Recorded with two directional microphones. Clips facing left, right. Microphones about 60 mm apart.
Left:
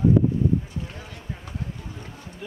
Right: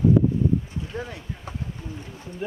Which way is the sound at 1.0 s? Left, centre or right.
Right.